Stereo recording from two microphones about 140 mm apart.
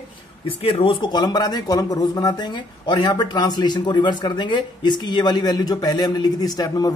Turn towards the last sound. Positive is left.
turn(degrees=30)  # may be behind; listen again after turning